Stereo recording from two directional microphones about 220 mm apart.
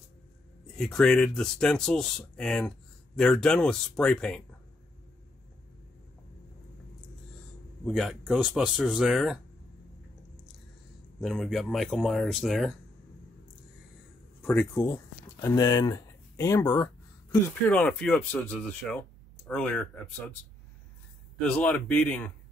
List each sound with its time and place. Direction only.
0.7 s speech: 5° left (ahead or behind)
7.8 s speech: centre (ahead or behind)
11.1 s speech: centre (ahead or behind)
14.4 s speech: 5° left (ahead or behind)
15.4 s speech: 15° left (ahead or behind)
17.6 s speech: 5° left (ahead or behind)
21.4 s speech: 5° left (ahead or behind)